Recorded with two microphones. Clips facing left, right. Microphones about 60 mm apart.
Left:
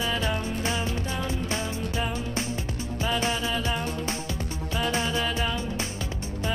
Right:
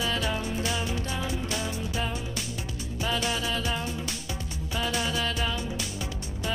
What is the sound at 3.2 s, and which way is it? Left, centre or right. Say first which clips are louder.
Music: left 2 dB; left.